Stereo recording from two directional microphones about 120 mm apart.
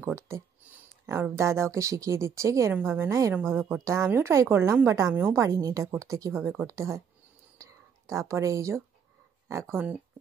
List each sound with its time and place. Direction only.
0.0 s speech: 20° right (ahead or behind)
7.5 s whispering: 25° right (ahead or behind)
9.5 s speech: 20° right (ahead or behind)